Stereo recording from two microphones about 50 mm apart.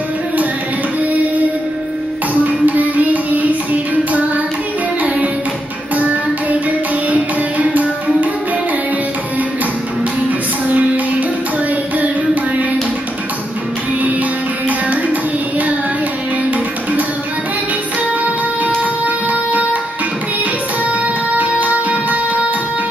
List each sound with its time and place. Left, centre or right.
2.4 s music: right
7.1 s music: right
19.0 s music: right
21.4 s music: right